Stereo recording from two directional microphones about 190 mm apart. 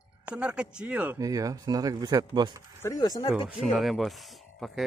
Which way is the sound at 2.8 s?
15° left (ahead or behind).